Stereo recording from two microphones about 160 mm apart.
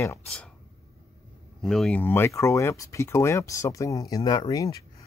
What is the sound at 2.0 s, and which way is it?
Speech, 15° left (ahead or behind).